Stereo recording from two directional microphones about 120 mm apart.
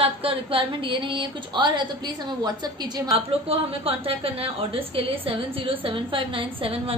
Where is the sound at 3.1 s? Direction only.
50° right (ahead or behind).